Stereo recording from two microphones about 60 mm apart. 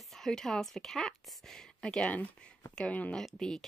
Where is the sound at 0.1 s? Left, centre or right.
Centre.